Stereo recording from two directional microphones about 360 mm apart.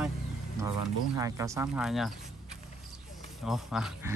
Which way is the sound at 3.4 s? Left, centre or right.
Centre.